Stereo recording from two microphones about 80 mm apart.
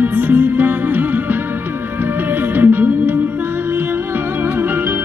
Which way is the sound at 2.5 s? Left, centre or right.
Right.